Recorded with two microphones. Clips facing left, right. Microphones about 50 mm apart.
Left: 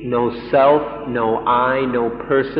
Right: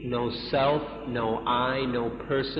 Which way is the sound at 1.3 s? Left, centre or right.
Centre.